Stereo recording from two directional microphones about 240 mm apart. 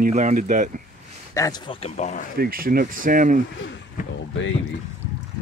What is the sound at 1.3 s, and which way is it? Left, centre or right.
Speech, centre.